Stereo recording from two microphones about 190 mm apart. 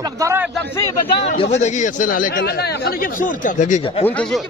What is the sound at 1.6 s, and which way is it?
Speech, 40° left (ahead or behind).